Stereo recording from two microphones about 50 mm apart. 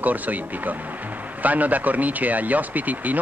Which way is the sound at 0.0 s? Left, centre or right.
Right.